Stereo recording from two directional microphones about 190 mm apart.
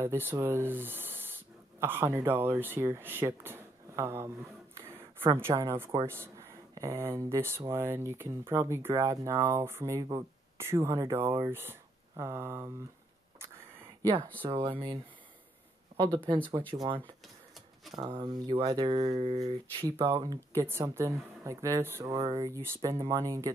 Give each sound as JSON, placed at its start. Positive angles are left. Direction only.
{"t": 0.0, "sound": "speech", "side_deg": -10}
{"t": 5.3, "sound": "a woman's voice", "side_deg": -15}
{"t": 13.4, "sound": "a sound", "side_deg": -15}
{"t": 14.4, "sound": "speech", "side_deg": -25}
{"t": 15.9, "sound": "a sound", "side_deg": -30}
{"t": 16.3, "sound": "speech", "side_deg": -20}
{"t": 17.9, "sound": "speech", "side_deg": -25}
{"t": 20.1, "sound": "speech", "side_deg": -20}